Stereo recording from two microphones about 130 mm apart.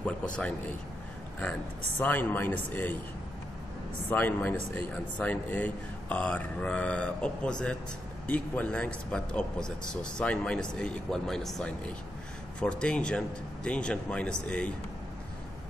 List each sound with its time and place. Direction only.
0.0 s a man's voice: 10° left (ahead or behind)
2.0 s speech: 15° left (ahead or behind)
4.1 s speech: 15° left (ahead or behind)